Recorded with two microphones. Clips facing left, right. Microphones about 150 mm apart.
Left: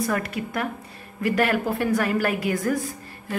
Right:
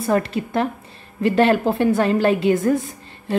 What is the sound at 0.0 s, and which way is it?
Speech, 30° right (ahead or behind).